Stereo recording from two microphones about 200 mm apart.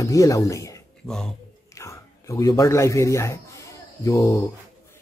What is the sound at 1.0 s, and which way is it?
Speech, 5° left (ahead or behind).